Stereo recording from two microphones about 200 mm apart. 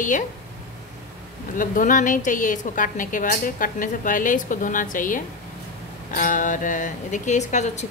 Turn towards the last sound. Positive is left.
turn(degrees=35)  # may be behind; listen again after turning